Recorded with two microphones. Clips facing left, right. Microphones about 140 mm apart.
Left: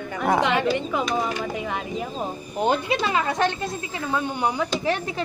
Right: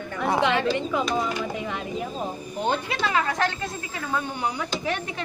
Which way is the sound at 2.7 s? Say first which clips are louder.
Left 3 dB; 15° left (ahead or behind).